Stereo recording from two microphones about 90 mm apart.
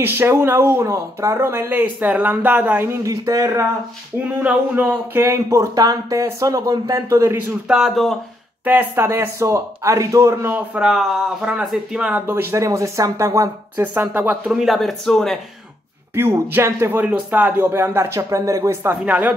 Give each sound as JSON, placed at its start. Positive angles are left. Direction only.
{"t": 0.0, "sound": "speech", "side_deg": -25}
{"t": 1.4, "sound": "speech", "side_deg": -25}
{"t": 3.0, "sound": "speech", "side_deg": -40}
{"t": 4.2, "sound": "speech", "side_deg": -15}
{"t": 7.6, "sound": "speech", "side_deg": 0}
{"t": 8.6, "sound": "speech", "side_deg": -20}
{"t": 9.0, "sound": "speech", "side_deg": -35}
{"t": 10.5, "sound": "speech", "side_deg": -15}
{"t": 10.9, "sound": "speech", "side_deg": -5}
{"t": 12.3, "sound": "speech", "side_deg": -25}
{"t": 13.8, "sound": "speech", "side_deg": -25}
{"t": 14.5, "sound": "speech", "side_deg": -5}
{"t": 16.2, "sound": "speech", "side_deg": -25}
{"t": 19.0, "sound": "speech", "side_deg": -20}